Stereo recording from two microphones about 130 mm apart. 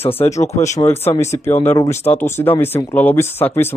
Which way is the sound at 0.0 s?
55° left (ahead or behind).